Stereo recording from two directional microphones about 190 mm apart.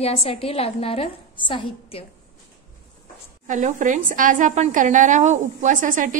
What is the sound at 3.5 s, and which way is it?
A woman's voice, 40° right (ahead or behind).